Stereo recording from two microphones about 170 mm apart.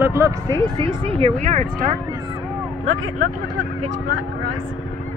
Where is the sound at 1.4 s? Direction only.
45° right (ahead or behind).